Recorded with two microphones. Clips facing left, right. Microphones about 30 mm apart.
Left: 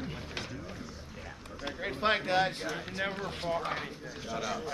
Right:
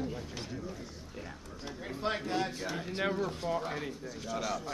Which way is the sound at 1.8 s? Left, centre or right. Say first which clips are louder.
Left 5 dB; left.